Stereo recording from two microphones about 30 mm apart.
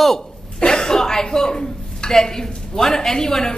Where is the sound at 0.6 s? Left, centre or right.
Left.